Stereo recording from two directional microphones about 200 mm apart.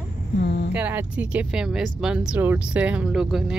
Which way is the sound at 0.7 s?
10° right (ahead or behind).